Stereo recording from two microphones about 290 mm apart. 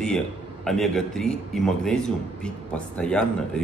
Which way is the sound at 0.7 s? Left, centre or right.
Centre.